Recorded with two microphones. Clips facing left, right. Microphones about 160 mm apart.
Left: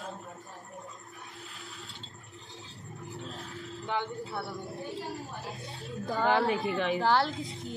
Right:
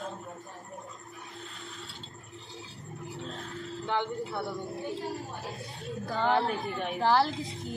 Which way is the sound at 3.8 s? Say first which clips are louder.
Right 3 dB; 20° right (ahead or behind).